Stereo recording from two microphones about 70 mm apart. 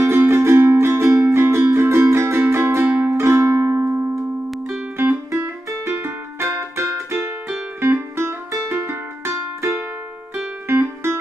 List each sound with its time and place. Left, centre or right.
0.0 s music: right
3.1 s music: right
10.7 s music: right